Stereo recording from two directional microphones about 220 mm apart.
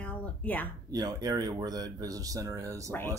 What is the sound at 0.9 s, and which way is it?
Speech, 15° right (ahead or behind).